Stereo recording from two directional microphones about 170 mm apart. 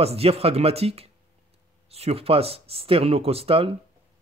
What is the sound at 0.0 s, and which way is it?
A man's voice, 35° right (ahead or behind).